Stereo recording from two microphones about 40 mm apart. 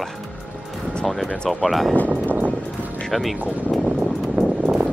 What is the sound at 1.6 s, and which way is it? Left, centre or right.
Speech, centre.